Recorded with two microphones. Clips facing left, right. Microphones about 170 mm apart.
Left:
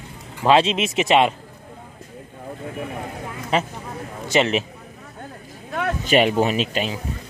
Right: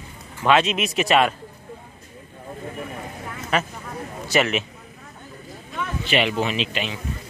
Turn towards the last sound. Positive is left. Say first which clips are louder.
# left 4 dB
turn(degrees=40)  # may be behind; listen again after turning